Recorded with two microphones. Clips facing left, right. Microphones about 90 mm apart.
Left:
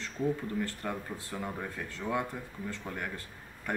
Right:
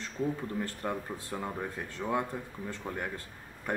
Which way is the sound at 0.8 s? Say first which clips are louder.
Right 2 dB; 25° right (ahead or behind).